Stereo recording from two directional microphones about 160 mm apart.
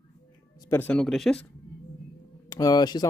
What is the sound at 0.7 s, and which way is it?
Speech, 10° left (ahead or behind).